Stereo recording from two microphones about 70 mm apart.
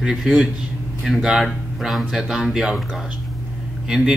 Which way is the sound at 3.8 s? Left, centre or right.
Centre.